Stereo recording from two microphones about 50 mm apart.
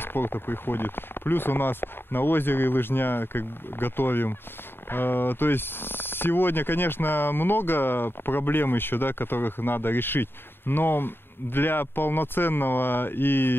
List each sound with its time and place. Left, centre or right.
0.0 s speech: left